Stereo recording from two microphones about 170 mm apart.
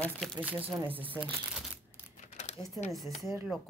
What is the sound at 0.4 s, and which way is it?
Speech, 10° right (ahead or behind).